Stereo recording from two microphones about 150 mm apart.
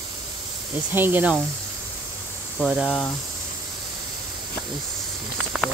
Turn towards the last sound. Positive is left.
turn(degrees=0)  # may be behind; listen again after turning